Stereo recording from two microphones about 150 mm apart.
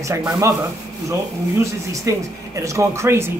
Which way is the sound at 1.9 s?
20° right (ahead or behind).